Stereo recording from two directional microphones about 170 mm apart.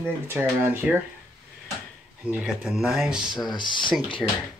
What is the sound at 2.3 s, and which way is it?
Speech, 5° right (ahead or behind).